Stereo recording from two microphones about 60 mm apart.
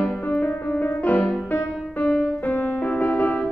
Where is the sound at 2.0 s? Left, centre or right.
Centre.